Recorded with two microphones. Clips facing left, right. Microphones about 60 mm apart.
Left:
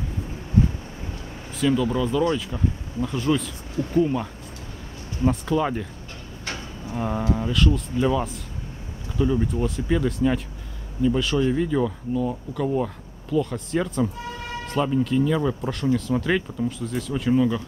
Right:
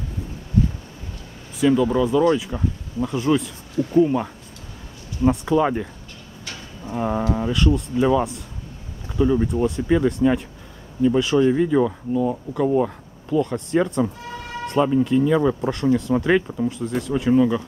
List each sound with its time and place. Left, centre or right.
1.6 s speech: centre
3.2 s speech: centre
5.3 s speech: centre
7.0 s speech: centre